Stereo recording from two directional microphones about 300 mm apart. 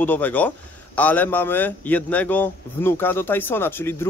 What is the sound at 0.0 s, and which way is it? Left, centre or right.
A man's voice, centre.